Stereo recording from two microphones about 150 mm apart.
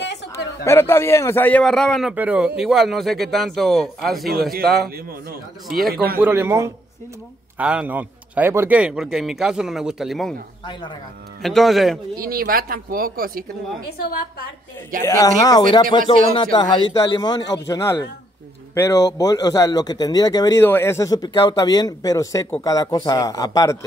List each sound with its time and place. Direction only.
0.7 s a man's voice: 15° left (ahead or behind); by 4.3 s centre (ahead or behind)
4.3 s a man's voice: 80° right
5.7 s a man's voice: centre (ahead or behind)
6.1 s a man's voice: 15° right (ahead or behind)
11.4 s a man's voice: centre (ahead or behind)
12.2 s speech: 80° right
15.0 s speech: 20° left (ahead or behind)
20.6 s speech: 15° left (ahead or behind)